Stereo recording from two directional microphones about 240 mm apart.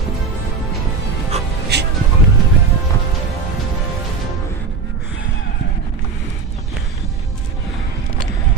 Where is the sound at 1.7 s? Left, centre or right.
Right.